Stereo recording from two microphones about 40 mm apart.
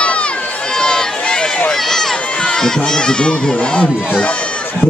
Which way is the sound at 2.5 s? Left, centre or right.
Centre.